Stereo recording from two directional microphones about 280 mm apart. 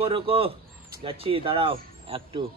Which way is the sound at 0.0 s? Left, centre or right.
Centre.